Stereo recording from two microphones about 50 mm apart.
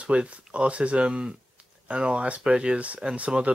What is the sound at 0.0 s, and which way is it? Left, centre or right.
Speech, right.